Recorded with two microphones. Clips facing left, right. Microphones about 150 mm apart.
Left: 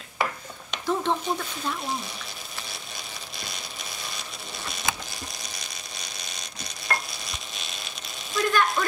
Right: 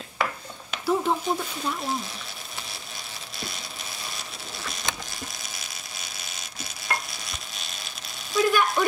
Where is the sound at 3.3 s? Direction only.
Centre (ahead or behind).